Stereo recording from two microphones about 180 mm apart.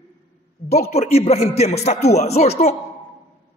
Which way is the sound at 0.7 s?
35° left (ahead or behind).